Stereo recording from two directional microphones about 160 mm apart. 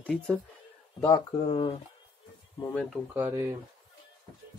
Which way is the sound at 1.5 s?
35° left (ahead or behind).